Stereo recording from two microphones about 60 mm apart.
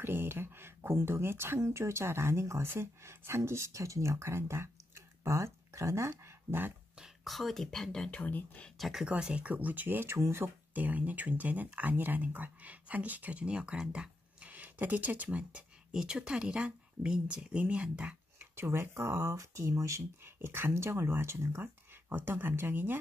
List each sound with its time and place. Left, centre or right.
0.0 s speech: right
7.2 s speech: centre
8.2 s speech: left
8.7 s speech: centre
9.0 s speech: centre; by 10.1 s right
10.1 s speech: right
10.7 s speech: right
15.9 s speech: centre
18.4 s speech: right
20.3 s speech: right
22.1 s speech: right